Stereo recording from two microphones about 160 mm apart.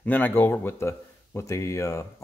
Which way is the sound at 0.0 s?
10° left (ahead or behind).